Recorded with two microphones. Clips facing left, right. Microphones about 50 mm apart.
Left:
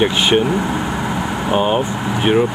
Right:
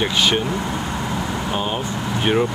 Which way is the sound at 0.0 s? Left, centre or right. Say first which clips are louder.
Left 5 dB; left.